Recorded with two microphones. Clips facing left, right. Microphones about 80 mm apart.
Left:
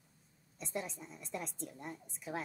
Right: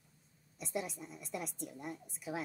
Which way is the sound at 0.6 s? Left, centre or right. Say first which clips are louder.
Right 1 dB; centre.